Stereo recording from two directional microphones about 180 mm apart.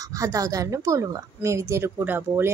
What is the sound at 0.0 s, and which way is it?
Speech, 20° right (ahead or behind).